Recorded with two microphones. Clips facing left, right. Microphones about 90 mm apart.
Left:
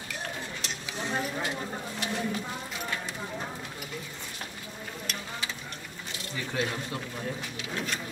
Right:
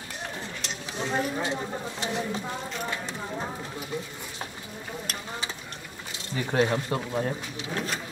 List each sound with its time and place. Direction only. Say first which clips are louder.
1.1 s speech: right 4 dB; 25° right (ahead or behind)
6.3 s speech: right 7 dB; 40° right (ahead or behind)